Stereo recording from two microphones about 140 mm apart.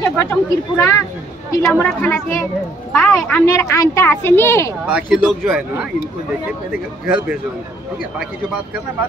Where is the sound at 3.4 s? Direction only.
20° left (ahead or behind).